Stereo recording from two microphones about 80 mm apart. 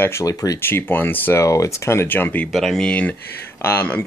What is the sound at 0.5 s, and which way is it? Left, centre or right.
Speech, left.